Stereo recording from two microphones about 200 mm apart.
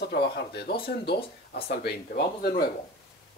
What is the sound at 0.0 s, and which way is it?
Speech, 55° left (ahead or behind).